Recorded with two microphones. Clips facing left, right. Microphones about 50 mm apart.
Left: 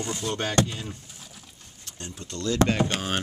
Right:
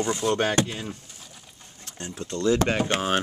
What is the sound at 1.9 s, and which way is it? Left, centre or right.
Speech, right.